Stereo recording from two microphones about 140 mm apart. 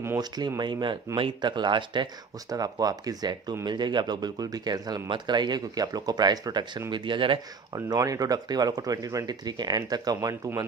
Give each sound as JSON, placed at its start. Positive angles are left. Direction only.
{"t": 0.6, "sound": "speech", "side_deg": -30}